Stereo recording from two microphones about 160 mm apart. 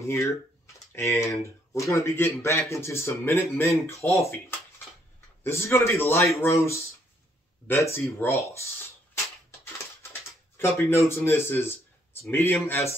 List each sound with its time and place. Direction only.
0.0 s speech: 15° left (ahead or behind)
10.6 s speech: 20° left (ahead or behind)